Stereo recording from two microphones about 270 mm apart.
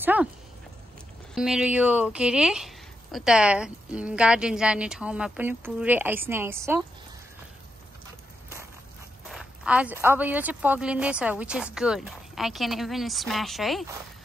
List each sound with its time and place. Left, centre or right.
0.0 s speech: centre
1.3 s speech: centre
9.3 s speech: centre